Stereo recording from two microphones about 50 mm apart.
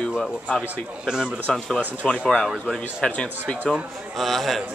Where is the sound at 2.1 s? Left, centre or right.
Centre.